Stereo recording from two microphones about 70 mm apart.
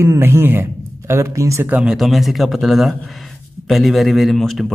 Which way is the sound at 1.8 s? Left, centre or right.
Centre.